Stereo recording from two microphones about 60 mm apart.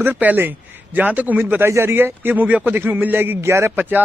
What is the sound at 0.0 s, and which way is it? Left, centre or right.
Speech, right.